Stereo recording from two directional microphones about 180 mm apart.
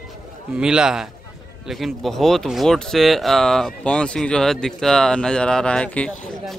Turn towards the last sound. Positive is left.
turn(degrees=5)  # may be behind; listen again after turning